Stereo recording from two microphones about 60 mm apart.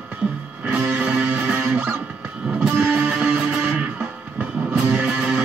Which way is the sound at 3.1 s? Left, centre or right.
Centre.